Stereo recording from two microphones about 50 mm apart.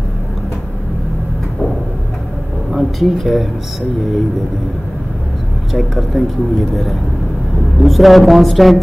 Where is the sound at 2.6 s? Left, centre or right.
Centre.